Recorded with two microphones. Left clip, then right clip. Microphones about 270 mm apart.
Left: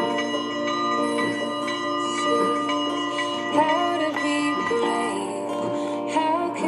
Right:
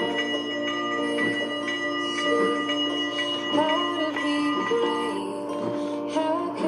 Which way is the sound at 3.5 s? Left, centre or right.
Centre.